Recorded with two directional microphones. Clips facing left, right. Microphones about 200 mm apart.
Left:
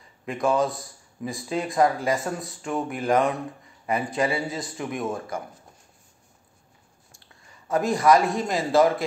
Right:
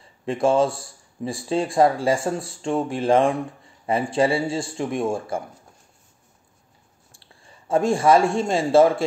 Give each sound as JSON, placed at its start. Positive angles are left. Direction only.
{"t": 0.2, "sound": "a man's voice", "side_deg": -30}
{"t": 7.1, "sound": "speech", "side_deg": -30}